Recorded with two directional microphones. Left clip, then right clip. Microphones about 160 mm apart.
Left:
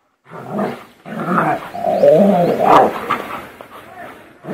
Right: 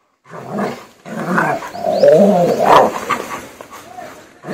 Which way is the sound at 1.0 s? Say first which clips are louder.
Even; 20° right (ahead or behind).